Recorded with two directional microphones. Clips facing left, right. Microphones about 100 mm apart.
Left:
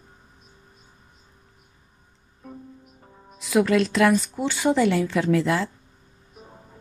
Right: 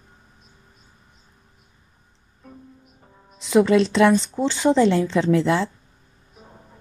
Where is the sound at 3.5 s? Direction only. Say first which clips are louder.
Right 3 dB; 30° right (ahead or behind).